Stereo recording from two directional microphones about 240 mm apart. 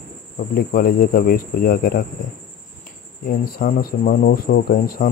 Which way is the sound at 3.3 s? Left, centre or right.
Left.